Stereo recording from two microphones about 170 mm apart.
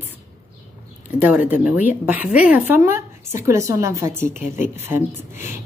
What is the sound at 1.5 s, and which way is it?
A woman's voice, 10° right (ahead or behind).